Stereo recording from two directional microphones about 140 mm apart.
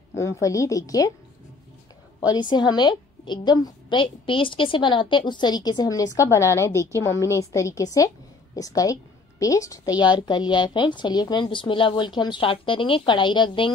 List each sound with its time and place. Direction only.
0.1 s a woman's voice: 20° left (ahead or behind)
2.1 s a sound: 30° left (ahead or behind)
2.5 s a woman's voice: 30° left (ahead or behind)